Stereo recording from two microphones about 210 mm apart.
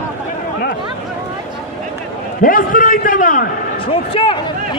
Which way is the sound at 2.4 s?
40° left (ahead or behind).